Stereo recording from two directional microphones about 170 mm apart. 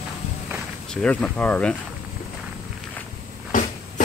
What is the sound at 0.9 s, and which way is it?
Speech, 5° left (ahead or behind).